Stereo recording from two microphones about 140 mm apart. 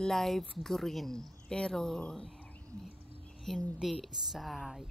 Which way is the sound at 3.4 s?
Centre (ahead or behind).